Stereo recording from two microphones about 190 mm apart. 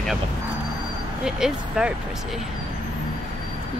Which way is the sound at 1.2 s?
5° right (ahead or behind).